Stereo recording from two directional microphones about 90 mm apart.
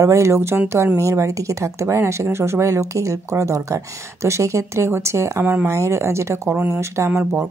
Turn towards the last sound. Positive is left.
turn(degrees=-25)  # may be behind; listen again after turning